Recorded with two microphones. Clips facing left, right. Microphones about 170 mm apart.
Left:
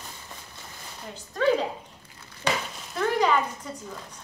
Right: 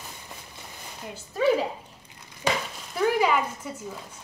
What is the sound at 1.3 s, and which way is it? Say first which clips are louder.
Speech: right 1 dB; 5° right (ahead or behind).